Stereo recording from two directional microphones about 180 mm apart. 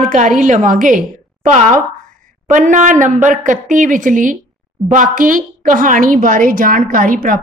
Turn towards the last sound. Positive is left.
turn(degrees=-50)  # may be behind; listen again after turning